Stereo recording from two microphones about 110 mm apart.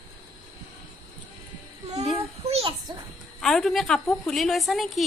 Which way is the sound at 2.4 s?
65° right (ahead or behind).